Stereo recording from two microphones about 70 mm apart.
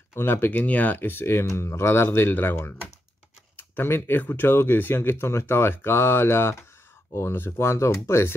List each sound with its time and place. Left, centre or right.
0.1 s speech: left
3.5 s speech: left